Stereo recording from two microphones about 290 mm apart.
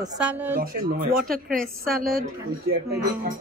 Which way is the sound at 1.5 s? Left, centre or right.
Centre.